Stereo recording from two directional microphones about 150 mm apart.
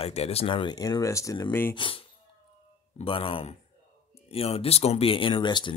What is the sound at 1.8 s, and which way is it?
Speech, 35° left (ahead or behind).